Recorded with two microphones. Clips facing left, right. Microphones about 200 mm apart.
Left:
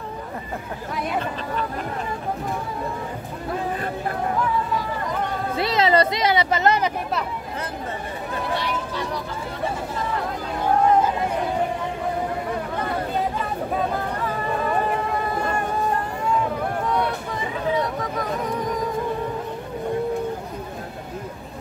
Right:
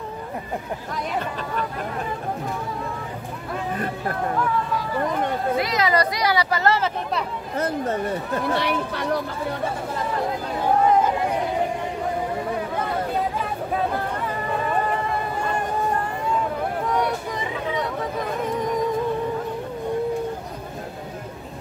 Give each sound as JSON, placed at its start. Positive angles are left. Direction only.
{"t": 5.6, "sound": "speech", "side_deg": 30}
{"t": 8.5, "sound": "speech", "side_deg": -60}